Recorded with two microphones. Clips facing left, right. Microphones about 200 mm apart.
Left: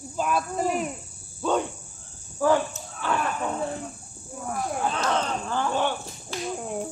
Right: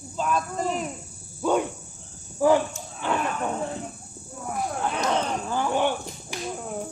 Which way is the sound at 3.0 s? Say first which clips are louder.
Right 1 dB; 20° right (ahead or behind).